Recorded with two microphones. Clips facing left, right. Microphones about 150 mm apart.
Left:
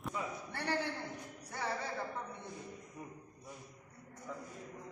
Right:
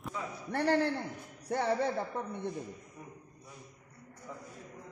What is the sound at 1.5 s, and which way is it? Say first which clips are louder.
Music: right 10 dB; 65° right (ahead or behind).